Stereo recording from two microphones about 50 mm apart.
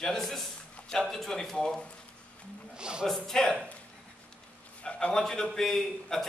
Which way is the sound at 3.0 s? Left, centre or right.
Centre.